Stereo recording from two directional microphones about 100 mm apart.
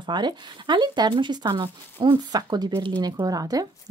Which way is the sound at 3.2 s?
35° right (ahead or behind).